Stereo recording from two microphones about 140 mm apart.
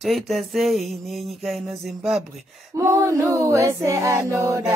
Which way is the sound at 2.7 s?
20° right (ahead or behind).